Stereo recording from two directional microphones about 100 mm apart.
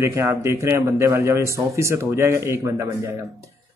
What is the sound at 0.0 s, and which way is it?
Speech, 25° right (ahead or behind).